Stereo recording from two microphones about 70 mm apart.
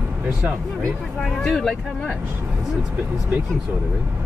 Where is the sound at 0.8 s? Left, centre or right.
Centre.